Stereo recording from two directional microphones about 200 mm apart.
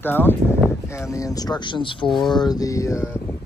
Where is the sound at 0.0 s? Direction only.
10° left (ahead or behind).